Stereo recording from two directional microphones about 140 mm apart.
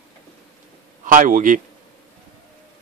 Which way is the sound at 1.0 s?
75° right (ahead or behind).